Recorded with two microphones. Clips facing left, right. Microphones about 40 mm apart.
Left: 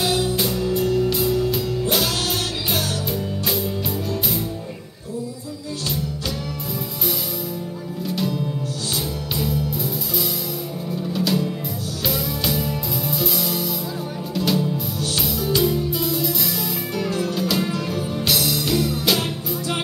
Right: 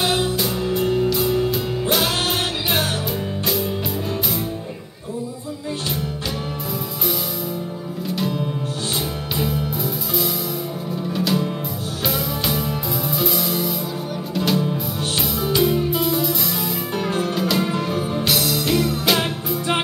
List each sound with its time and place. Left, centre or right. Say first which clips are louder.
0.0 s music: right 1 dB; right
3.1 s music: right 1 dB; centre
8.9 s music: right 1 dB; right
12.1 s music: right 1 dB; centre
13.2 s music: right 4 dB; centre
14.6 s music: right 1 dB; right
17.4 s music: right 2 dB; centre
17.6 s music: right 2 dB; right
18.2 s music: left 1 dB; centre
18.7 s music: right 2 dB; centre